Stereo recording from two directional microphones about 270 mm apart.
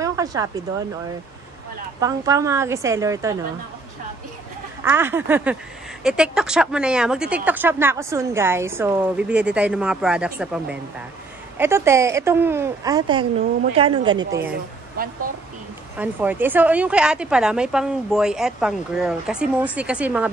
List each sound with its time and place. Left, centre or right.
0.0 s a sound: centre
2.0 s speech: centre
4.8 s speech: centre
15.0 s speech: right
16.0 s speech: centre